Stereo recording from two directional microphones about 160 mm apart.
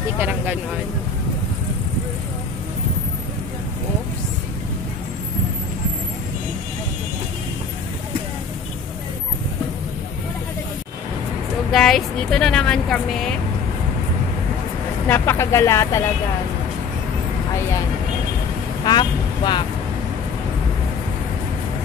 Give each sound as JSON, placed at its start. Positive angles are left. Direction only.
{"t": 0.2, "sound": "speech", "side_deg": -10}
{"t": 11.7, "sound": "a woman's voice", "side_deg": 5}
{"t": 15.0, "sound": "speech", "side_deg": 15}
{"t": 18.9, "sound": "speech", "side_deg": 30}